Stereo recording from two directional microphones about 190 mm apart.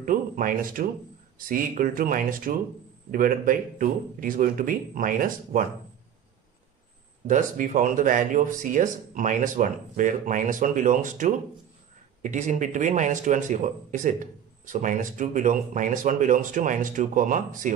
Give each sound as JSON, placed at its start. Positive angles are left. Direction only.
{"t": 0.0, "sound": "a sound", "side_deg": -45}
{"t": 1.5, "sound": "speech", "side_deg": -45}
{"t": 7.2, "sound": "speech", "side_deg": -40}